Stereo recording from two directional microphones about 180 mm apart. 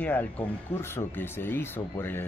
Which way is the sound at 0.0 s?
10° left (ahead or behind).